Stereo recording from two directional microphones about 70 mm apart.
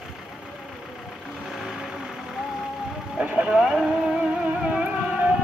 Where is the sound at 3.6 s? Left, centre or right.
Centre.